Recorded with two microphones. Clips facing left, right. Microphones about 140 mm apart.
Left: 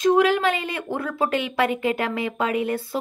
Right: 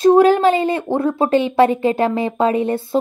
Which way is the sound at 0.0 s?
35° right (ahead or behind).